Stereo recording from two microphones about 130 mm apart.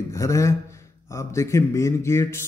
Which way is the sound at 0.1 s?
25° left (ahead or behind).